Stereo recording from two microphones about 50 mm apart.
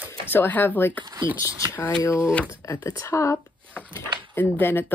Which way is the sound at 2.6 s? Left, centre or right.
Left.